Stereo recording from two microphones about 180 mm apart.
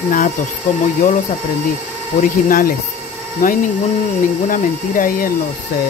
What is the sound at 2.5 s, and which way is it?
Speech, 50° left (ahead or behind).